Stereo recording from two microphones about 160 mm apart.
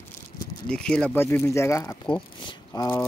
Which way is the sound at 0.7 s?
5° left (ahead or behind).